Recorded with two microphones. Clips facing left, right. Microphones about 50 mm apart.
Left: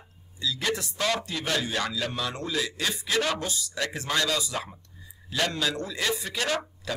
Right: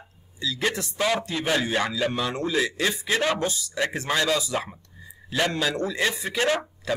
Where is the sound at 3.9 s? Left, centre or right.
Centre.